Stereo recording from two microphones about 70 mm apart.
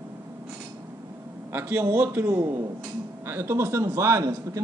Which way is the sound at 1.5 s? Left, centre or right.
Right.